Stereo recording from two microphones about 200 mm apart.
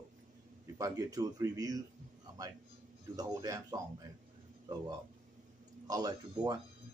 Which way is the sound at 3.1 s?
15° right (ahead or behind).